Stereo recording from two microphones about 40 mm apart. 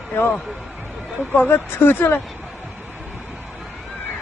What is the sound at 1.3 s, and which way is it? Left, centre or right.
Speech, left.